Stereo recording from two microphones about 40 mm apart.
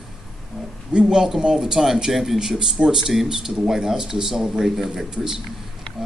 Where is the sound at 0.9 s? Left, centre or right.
Centre.